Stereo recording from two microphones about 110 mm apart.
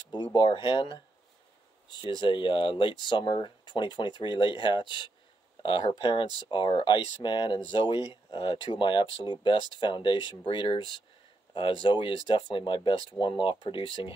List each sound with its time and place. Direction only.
0.1 s speech: 45° left (ahead or behind)
2.1 s speech: 45° left (ahead or behind)